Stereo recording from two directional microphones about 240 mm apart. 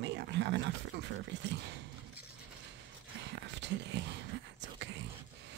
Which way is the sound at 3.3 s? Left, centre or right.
Right.